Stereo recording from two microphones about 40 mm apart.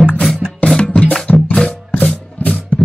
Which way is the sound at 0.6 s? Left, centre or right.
Centre.